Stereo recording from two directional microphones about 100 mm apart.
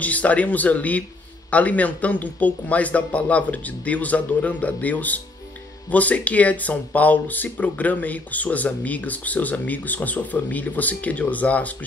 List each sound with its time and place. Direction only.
0.0 s speech: 15° left (ahead or behind)